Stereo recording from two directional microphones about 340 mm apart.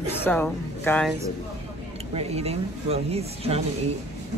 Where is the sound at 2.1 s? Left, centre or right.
Centre.